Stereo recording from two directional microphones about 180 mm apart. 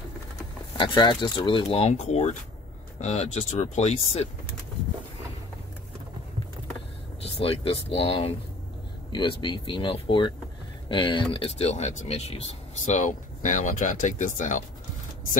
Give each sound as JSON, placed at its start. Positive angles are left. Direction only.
{"t": 0.7, "sound": "speech", "side_deg": 25}
{"t": 7.2, "sound": "speech", "side_deg": 35}